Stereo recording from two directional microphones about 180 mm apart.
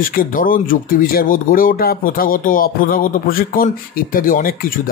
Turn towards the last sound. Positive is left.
turn(degrees=50)  # may be behind; listen again after turning